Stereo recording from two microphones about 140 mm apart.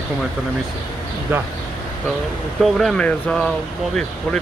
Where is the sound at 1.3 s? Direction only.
15° right (ahead or behind).